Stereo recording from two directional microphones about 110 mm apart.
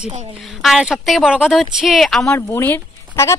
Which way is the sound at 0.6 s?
5° right (ahead or behind).